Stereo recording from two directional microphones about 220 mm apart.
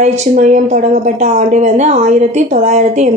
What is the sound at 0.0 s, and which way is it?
A woman's voice, 35° right (ahead or behind).